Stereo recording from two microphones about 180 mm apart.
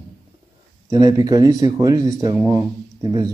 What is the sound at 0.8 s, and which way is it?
Speech, 20° right (ahead or behind).